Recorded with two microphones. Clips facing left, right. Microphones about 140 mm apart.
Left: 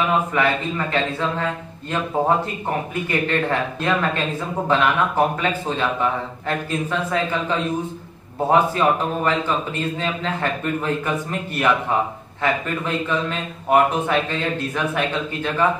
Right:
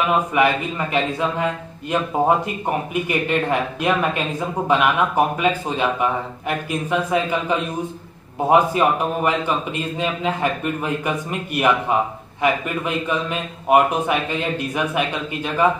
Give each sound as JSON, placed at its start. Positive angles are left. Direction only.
{"t": 0.3, "sound": "a man's voice", "side_deg": -15}